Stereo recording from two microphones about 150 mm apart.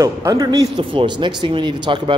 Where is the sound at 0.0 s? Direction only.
20° right (ahead or behind).